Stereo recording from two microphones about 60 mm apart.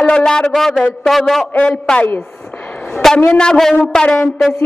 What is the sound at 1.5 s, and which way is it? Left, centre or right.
Speech, left.